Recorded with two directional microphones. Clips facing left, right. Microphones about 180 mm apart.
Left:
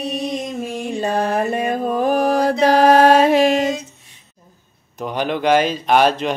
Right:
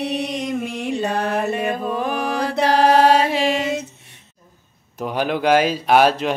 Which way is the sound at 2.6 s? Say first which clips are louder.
Left 2 dB; 50° left (ahead or behind).